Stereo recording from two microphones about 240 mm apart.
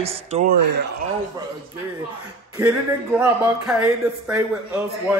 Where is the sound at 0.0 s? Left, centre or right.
Right.